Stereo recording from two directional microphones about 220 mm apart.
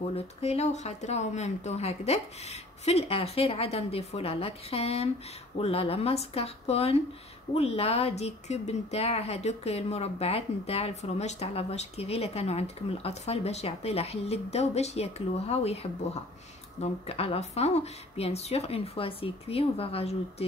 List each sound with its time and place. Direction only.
0.0 s a woman's voice: 25° left (ahead or behind)